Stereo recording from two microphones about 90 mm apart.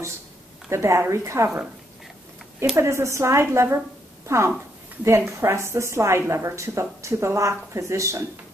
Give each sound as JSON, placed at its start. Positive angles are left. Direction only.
{"t": 0.7, "sound": "a woman's voice", "side_deg": -30}
{"t": 2.7, "sound": "a woman's voice", "side_deg": -30}
{"t": 5.0, "sound": "a woman's voice", "side_deg": -30}